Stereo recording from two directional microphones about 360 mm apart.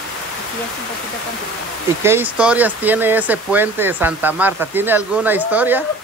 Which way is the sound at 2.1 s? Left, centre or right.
Centre.